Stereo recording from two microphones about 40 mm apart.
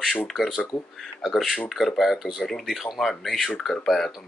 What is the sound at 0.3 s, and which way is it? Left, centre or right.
Speech, centre.